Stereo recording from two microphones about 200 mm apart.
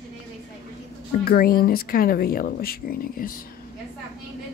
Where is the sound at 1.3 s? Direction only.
50° left (ahead or behind).